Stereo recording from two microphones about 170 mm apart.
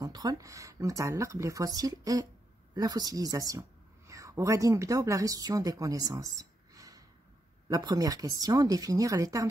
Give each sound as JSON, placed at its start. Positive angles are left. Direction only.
{"t": 0.0, "sound": "a woman's voice", "side_deg": -20}